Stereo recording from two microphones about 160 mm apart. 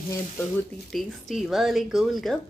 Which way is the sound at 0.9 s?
Centre (ahead or behind).